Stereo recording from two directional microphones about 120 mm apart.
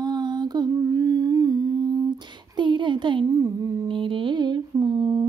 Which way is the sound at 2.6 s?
40° right (ahead or behind).